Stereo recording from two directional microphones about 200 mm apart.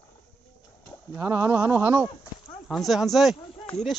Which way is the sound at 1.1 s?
15° right (ahead or behind).